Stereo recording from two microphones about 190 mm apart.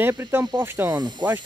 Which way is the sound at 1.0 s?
25° right (ahead or behind).